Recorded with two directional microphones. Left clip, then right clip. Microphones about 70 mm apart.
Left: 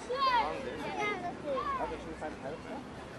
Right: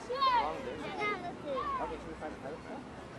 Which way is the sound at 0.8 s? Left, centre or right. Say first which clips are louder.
Left 1 dB; right.